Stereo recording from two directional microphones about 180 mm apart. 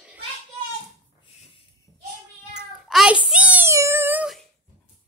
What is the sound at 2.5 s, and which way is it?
Meow, 5° right (ahead or behind).